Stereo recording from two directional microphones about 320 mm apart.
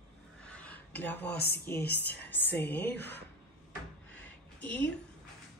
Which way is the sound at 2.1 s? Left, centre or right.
Centre.